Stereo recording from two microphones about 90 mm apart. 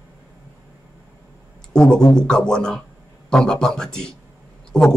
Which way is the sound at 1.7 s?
10° left (ahead or behind).